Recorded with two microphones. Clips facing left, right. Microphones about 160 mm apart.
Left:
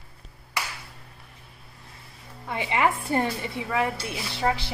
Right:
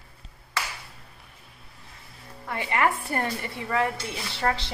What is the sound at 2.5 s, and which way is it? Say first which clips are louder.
A woman's voice: left 1 dB; 20° left (ahead or behind).